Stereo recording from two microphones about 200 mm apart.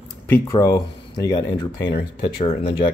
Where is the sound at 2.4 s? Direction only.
30° left (ahead or behind).